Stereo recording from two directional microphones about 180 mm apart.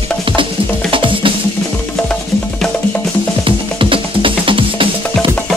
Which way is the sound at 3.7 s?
30° right (ahead or behind).